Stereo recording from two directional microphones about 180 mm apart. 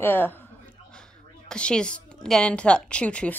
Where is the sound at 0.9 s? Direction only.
5° left (ahead or behind).